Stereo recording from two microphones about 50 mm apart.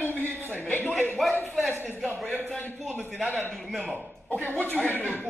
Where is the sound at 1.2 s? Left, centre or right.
Centre.